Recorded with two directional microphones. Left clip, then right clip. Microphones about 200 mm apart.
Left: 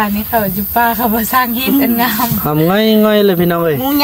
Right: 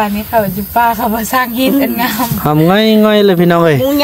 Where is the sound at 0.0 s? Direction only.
15° right (ahead or behind).